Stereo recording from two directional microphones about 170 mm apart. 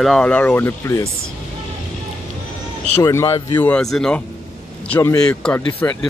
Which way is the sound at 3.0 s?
20° left (ahead or behind).